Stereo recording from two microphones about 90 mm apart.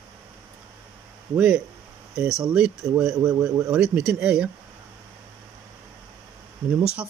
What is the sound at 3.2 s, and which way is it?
Speech, 35° right (ahead or behind).